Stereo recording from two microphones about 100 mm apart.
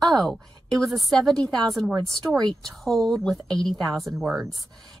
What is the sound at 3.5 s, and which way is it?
Speech, 40° right (ahead or behind).